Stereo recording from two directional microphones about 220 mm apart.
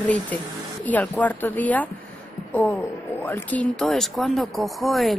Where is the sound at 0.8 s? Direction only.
5° left (ahead or behind).